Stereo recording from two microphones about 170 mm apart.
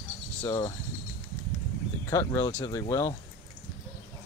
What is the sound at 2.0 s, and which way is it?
Speech, 20° left (ahead or behind).